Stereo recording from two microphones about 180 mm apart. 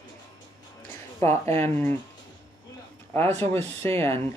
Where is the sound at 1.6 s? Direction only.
10° left (ahead or behind).